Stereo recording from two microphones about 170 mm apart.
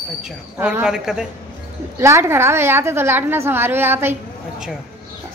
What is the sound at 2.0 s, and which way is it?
A woman's voice, 15° right (ahead or behind).